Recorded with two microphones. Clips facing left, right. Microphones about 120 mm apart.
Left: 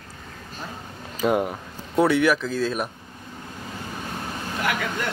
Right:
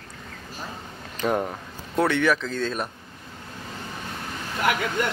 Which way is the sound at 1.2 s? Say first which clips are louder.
Left 3 dB; 10° left (ahead or behind).